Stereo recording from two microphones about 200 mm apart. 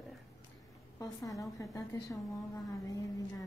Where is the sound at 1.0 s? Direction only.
15° left (ahead or behind).